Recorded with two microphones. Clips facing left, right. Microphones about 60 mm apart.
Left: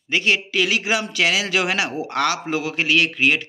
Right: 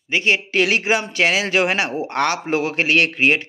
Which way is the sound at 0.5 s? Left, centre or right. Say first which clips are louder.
Right 3 dB; right.